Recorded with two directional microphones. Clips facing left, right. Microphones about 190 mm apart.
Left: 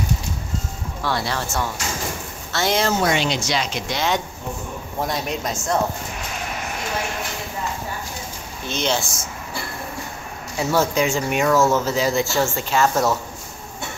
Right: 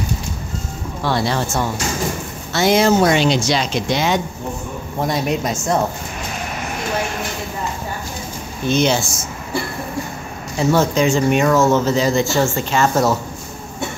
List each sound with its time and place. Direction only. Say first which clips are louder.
1.0 s speech: right 5 dB; 25° right (ahead or behind)
3.0 s speech: right 6 dB; 35° right (ahead or behind)
5.0 s speech: right 6 dB; 5° right (ahead or behind)
8.6 s speech: right 7 dB; 10° right (ahead or behind)
10.6 s speech: right 4 dB; 5° left (ahead or behind)